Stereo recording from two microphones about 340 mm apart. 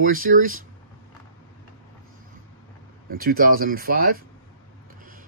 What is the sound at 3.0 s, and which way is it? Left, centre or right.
Speech, right.